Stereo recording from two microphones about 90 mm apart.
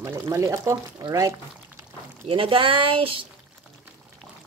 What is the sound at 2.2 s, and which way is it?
Speech, 90° right.